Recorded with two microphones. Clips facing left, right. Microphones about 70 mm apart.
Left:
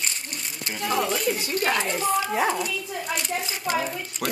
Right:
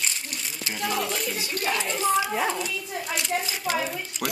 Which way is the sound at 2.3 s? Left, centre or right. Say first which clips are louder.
Left 3 dB; centre.